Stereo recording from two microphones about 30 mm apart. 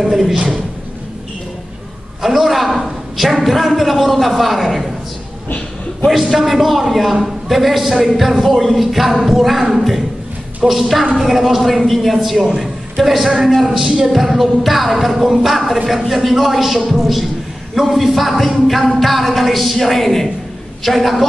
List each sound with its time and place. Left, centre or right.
0.0 s music: centre
2.2 s a man's voice: centre
6.2 s a man's voice: centre
10.7 s music: centre
11.1 s a man's voice: centre
13.0 s music: centre
15.1 s a man's voice: centre